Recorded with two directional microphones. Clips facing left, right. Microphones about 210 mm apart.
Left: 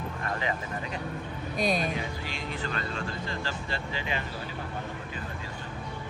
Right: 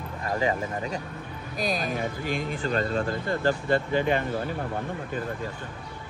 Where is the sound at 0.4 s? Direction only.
40° right (ahead or behind).